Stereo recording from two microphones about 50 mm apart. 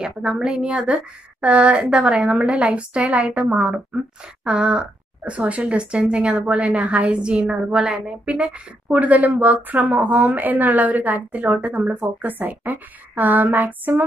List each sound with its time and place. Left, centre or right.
0.0 s speech: centre
8.8 s a woman's voice: right